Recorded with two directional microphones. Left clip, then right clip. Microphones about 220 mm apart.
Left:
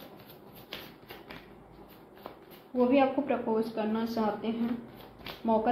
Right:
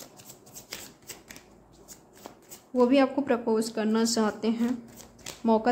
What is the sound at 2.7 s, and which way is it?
A woman's voice, 45° right (ahead or behind).